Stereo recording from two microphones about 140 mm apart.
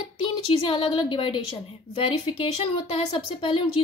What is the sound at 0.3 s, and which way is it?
Speech, 40° left (ahead or behind).